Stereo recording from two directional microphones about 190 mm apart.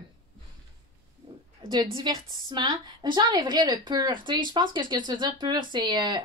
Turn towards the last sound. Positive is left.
turn(degrees=-20)  # may be behind; listen again after turning